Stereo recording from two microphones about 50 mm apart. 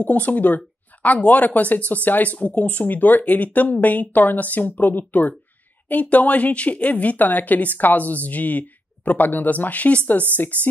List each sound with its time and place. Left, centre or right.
0.0 s speech: left